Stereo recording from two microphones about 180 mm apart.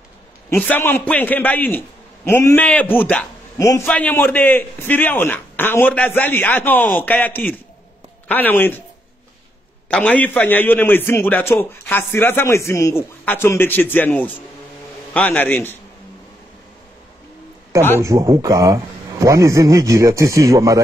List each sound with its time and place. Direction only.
0.5 s a man's voice: 10° left (ahead or behind)
9.8 s a man's voice: 5° left (ahead or behind)
18.0 s a man's voice: 15° right (ahead or behind)